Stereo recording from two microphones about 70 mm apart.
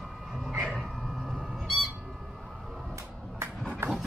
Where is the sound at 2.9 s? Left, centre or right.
Right.